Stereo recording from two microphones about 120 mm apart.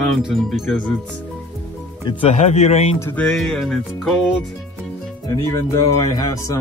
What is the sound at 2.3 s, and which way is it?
Speech, 75° left (ahead or behind).